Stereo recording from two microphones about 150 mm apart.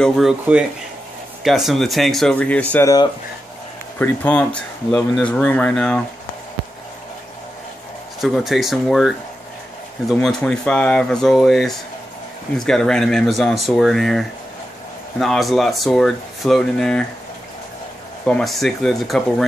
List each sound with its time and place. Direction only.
0.0 s speech: 5° left (ahead or behind)
1.4 s speech: centre (ahead or behind)
2.7 s speech: 20° left (ahead or behind)
4.0 s speech: 10° left (ahead or behind)
8.2 s speech: centre (ahead or behind)
18.2 s speech: 5° left (ahead or behind)